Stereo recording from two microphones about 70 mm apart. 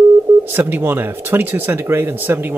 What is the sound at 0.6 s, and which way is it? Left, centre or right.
Speech, right.